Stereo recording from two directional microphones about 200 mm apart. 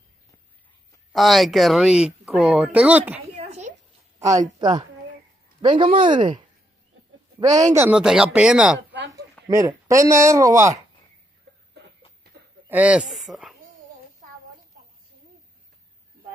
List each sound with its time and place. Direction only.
1.1 s speech: centre (ahead or behind)
3.3 s a sound: 35° right (ahead or behind)
4.2 s speech: 15° right (ahead or behind)
9.5 s speech: 15° right (ahead or behind)
11.8 s a sound: 55° right (ahead or behind)
12.6 s speech: 5° right (ahead or behind)